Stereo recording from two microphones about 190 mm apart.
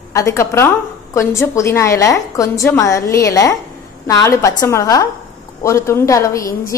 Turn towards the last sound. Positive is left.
turn(degrees=15)  # may be behind; listen again after turning